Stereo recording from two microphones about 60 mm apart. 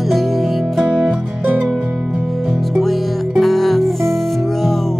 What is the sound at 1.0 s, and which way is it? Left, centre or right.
Music, centre.